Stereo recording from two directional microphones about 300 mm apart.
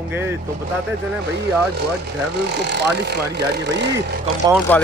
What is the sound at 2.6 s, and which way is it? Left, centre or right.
Speech, right.